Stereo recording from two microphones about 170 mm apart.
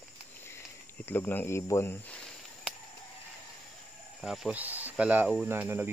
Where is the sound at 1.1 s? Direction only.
10° left (ahead or behind).